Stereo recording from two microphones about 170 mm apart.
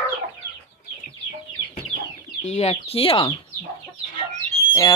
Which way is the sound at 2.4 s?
40° left (ahead or behind).